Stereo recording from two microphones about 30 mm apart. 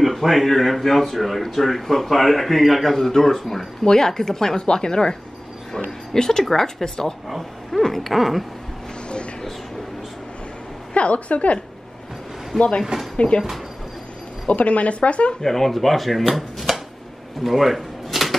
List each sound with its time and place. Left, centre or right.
0.0 s speech: centre
4.6 s speech: left
5.9 s a sound: left
6.5 s speech: centre
7.2 s speech: centre
7.8 s a sound: centre
10.9 s speech: left
12.5 s speech: centre
14.5 s speech: left
15.4 s speech: centre
17.4 s a sound: centre